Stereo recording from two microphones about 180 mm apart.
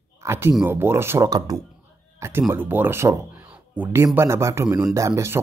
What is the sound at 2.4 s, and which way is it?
Speech, 10° right (ahead or behind).